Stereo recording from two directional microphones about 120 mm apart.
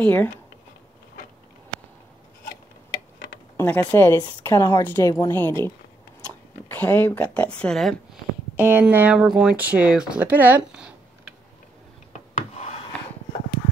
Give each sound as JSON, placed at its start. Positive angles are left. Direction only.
{"t": 0.0, "sound": "speech", "side_deg": 15}
{"t": 3.5, "sound": "a woman's voice", "side_deg": 15}
{"t": 8.5, "sound": "speech", "side_deg": -20}
{"t": 12.1, "sound": "a sound", "side_deg": 75}